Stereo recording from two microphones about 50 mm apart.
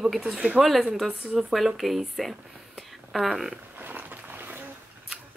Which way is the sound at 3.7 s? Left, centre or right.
Right.